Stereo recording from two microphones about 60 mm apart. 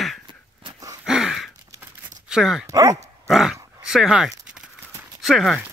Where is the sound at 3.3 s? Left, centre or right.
Centre.